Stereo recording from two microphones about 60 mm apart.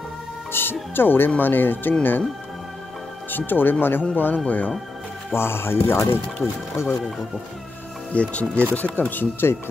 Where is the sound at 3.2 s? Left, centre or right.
Left.